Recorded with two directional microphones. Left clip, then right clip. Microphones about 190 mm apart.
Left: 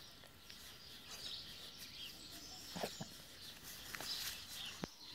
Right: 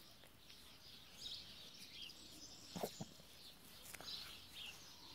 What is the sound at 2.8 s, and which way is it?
Dog, 20° right (ahead or behind).